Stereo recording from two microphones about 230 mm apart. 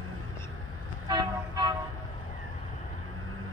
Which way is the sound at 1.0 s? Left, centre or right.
Centre.